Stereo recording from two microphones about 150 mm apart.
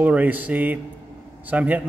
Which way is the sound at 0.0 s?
10° right (ahead or behind).